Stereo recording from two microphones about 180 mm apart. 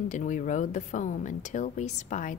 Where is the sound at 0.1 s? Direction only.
45° left (ahead or behind).